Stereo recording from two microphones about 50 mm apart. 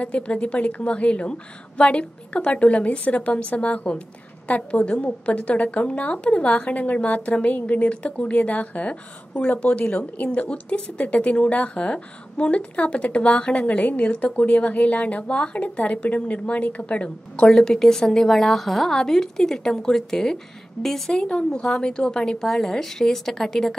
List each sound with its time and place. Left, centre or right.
0.0 s a woman's voice: left
17.5 s a woman's voice: centre